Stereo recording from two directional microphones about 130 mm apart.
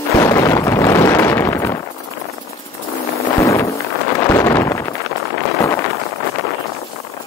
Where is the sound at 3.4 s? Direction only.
25° left (ahead or behind).